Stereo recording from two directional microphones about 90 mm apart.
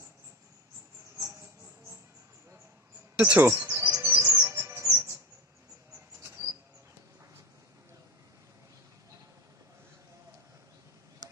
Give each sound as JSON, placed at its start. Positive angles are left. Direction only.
{"t": 3.2, "sound": "speech", "side_deg": -15}
{"t": 3.4, "sound": "music", "side_deg": -25}
{"t": 4.9, "sound": "bird", "side_deg": -30}
{"t": 6.2, "sound": "a sound", "side_deg": -30}